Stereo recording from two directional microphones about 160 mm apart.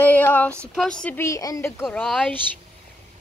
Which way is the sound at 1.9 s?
Centre (ahead or behind).